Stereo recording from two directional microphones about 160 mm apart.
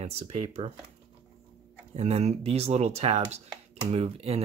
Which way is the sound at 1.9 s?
45° right (ahead or behind).